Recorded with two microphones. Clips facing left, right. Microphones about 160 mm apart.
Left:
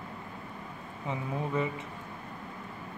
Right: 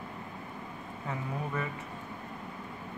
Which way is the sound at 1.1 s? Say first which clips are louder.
Left 3 dB; 20° left (ahead or behind).